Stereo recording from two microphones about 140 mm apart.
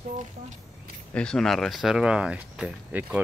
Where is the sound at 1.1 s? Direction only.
5° left (ahead or behind).